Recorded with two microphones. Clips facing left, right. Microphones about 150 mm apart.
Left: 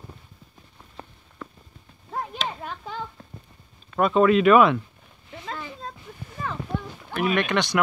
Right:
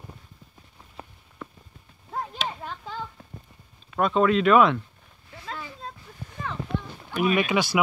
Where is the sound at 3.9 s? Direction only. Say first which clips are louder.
Left 3 dB; 5° left (ahead or behind).